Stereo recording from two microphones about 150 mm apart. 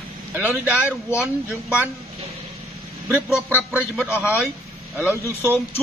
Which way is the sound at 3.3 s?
10° right (ahead or behind).